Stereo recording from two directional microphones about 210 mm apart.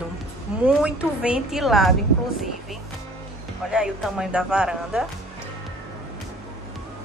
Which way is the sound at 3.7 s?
5° right (ahead or behind).